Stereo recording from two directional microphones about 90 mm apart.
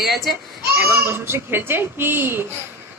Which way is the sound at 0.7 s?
25° right (ahead or behind).